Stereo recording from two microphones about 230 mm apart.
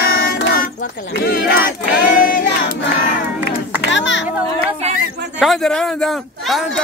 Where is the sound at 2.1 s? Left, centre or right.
Left.